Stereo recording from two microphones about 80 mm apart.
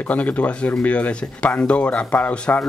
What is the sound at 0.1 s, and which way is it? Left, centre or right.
Speech, centre.